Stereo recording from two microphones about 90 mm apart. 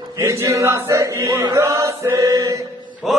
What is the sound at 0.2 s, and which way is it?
Chant, 35° right (ahead or behind).